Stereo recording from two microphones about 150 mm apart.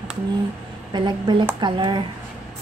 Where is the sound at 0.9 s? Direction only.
30° right (ahead or behind).